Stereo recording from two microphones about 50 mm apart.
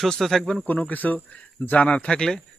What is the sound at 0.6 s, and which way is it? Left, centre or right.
Speech, left.